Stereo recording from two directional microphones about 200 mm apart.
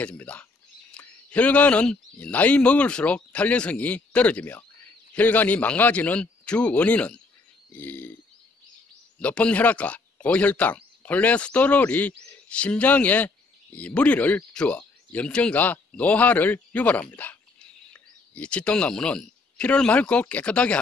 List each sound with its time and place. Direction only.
0.0 s a sound: 5° left (ahead or behind)
0.9 s speech: 5° left (ahead or behind)
9.2 s speech: 5° left (ahead or behind)